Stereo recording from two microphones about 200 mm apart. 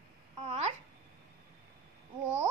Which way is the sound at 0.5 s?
35° right (ahead or behind).